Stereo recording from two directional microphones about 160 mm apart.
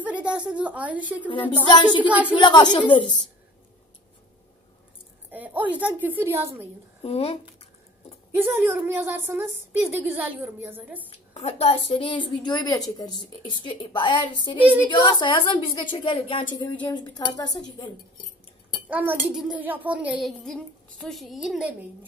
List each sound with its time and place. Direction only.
0.0 s a woman's voice: 5° right (ahead or behind)
1.7 s a woman's voice: 25° left (ahead or behind)
5.3 s a woman's voice: 10° right (ahead or behind)
7.0 s speech: 40° left (ahead or behind)
8.4 s a woman's voice: 15° right (ahead or behind)
11.1 s a woman's voice: 40° left (ahead or behind)
14.6 s a woman's voice: 10° right (ahead or behind)
14.9 s a woman's voice: 30° left (ahead or behind)
18.9 s speech: 10° right (ahead or behind)